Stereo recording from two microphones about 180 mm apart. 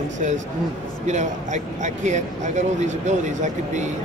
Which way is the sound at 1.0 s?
40° right (ahead or behind).